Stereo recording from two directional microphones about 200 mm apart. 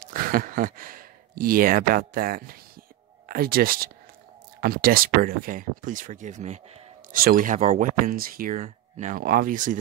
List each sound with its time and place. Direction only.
0.0 s speech: 45° right (ahead or behind)